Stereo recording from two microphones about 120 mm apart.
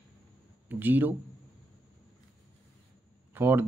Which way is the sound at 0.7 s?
15° right (ahead or behind).